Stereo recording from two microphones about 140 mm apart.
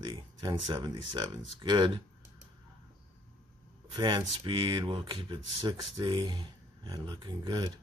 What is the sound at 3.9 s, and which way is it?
Speech, 35° right (ahead or behind).